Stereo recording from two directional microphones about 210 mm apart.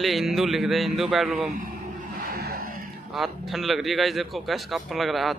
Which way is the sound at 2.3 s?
45° right (ahead or behind).